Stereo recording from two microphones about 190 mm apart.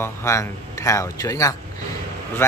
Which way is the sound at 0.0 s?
15° left (ahead or behind).